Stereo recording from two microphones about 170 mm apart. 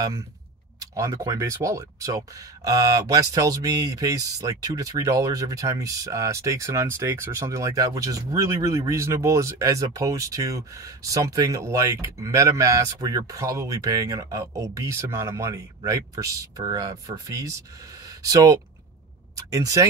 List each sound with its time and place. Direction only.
0.9 s speech: 20° right (ahead or behind)